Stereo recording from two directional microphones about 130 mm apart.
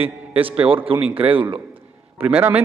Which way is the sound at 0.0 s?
45° right (ahead or behind).